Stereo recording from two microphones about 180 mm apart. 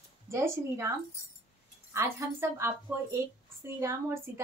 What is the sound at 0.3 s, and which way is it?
Speech, 15° right (ahead or behind).